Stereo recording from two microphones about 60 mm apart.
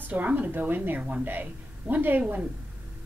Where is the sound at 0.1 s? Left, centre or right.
Right.